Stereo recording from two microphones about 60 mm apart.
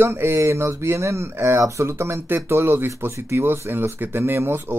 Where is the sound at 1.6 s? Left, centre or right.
Right.